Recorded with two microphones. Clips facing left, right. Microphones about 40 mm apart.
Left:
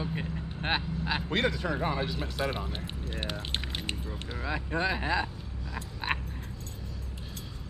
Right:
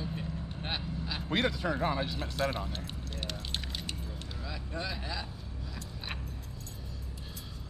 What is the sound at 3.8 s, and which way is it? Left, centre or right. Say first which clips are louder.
Keys jangling: left 5 dB; left.